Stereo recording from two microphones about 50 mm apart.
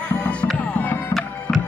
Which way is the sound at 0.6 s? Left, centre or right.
Left.